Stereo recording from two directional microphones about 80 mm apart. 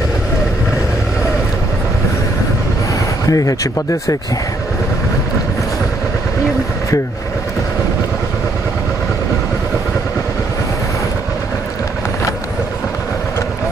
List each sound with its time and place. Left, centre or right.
3.3 s speech: left